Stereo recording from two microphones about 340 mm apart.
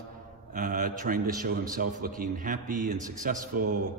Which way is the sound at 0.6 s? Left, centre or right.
Right.